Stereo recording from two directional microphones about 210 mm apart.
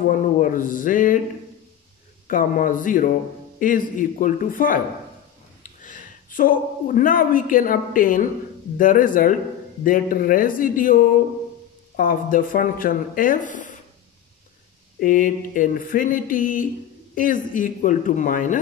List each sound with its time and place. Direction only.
0.1 s speech: 40° left (ahead or behind)
2.2 s a man's voice: 40° left (ahead or behind)
15.0 s speech: 40° left (ahead or behind)